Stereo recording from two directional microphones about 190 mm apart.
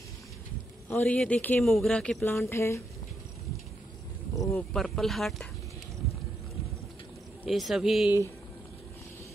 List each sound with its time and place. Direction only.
0.8 s a man's voice: 10° left (ahead or behind)
2.4 s speech: 15° left (ahead or behind)
4.4 s speech: 15° left (ahead or behind)
4.7 s a man's voice: centre (ahead or behind)
7.4 s a man's voice: centre (ahead or behind)